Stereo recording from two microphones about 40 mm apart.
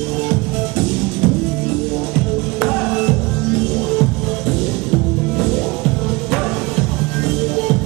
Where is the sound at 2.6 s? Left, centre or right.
Centre.